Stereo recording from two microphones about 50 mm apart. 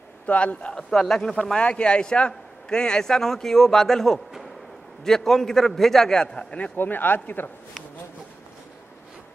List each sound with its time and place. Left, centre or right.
0.3 s speech: left
0.9 s a man's voice: centre
1.6 s a man's voice: left
6.8 s speech: left